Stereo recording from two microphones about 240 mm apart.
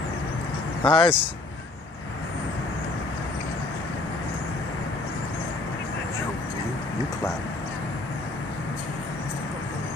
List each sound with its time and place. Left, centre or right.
0.8 s speech: left